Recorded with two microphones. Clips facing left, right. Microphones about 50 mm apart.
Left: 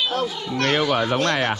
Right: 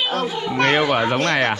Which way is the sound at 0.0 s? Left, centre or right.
Right.